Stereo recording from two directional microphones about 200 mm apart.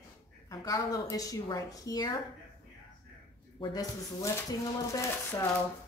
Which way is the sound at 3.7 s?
15° left (ahead or behind).